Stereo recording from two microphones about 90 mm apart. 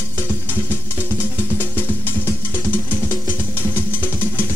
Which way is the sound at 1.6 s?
25° left (ahead or behind).